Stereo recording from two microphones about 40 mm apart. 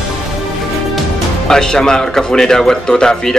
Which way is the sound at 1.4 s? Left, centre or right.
Centre.